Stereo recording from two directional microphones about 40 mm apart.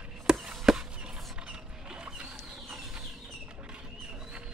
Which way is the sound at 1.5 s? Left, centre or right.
Right.